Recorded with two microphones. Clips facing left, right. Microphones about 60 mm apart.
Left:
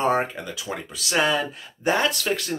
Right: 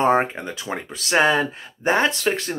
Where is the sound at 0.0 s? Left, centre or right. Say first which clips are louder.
Right 4 dB; right.